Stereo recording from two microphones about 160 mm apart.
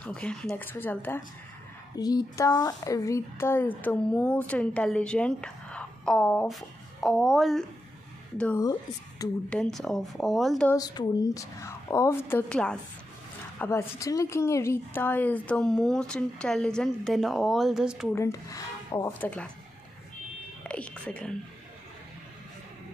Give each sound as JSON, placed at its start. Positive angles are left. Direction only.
{"t": 0.0, "sound": "speech", "side_deg": 5}
{"t": 2.0, "sound": "speech", "side_deg": 25}
{"t": 8.4, "sound": "speech", "side_deg": 10}
{"t": 10.7, "sound": "speech", "side_deg": 25}
{"t": 13.6, "sound": "speech", "side_deg": 15}
{"t": 18.1, "sound": "speech", "side_deg": 20}
{"t": 19.2, "sound": "speech", "side_deg": 5}
{"t": 20.6, "sound": "speech", "side_deg": 5}